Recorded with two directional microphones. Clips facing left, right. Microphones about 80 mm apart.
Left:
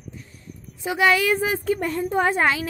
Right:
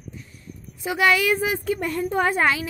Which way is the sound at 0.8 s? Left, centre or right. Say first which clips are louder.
Left 1 dB; left.